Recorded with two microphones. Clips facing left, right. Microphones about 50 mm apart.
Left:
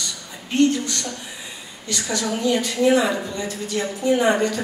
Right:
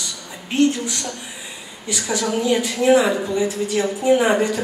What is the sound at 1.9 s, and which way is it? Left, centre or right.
A woman's voice, centre.